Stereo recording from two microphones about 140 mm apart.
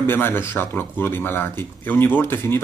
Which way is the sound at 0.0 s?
15° left (ahead or behind).